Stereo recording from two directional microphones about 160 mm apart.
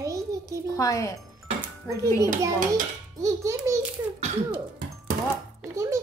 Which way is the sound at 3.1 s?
20° right (ahead or behind).